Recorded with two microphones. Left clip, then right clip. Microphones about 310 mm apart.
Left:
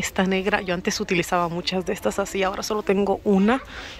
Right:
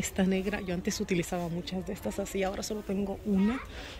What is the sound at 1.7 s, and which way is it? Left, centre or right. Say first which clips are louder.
Speech: left 13 dB; left.